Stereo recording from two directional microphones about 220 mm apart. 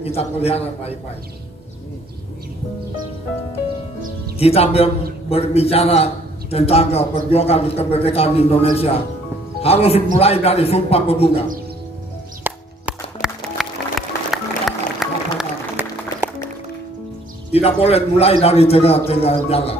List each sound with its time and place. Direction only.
0.0 s a man's voice: 25° left (ahead or behind)
4.4 s a man's voice: 25° left (ahead or behind)
12.4 s music: 5° right (ahead or behind)
17.5 s a man's voice: 25° left (ahead or behind)